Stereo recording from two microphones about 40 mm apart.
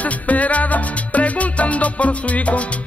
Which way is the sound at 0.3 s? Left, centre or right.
Left.